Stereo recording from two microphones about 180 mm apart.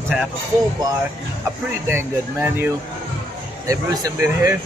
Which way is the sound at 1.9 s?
10° right (ahead or behind).